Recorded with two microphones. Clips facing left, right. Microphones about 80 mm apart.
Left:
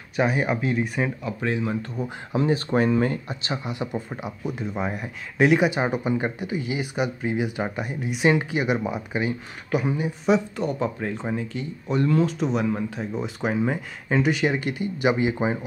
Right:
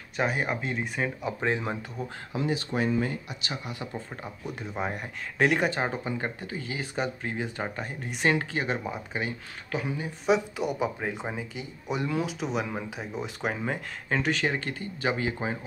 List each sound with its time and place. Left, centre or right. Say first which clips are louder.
0.1 s speech: left 5 dB; centre
1.2 s speech: left 2 dB; right
2.0 s speech: left 5 dB; centre
2.3 s speech: left 7 dB; left
3.4 s speech: left 7 dB; left
4.5 s speech: left 4 dB; centre
10.2 s speech: left 3 dB; centre